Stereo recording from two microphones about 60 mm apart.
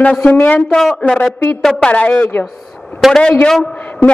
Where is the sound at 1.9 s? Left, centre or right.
Left.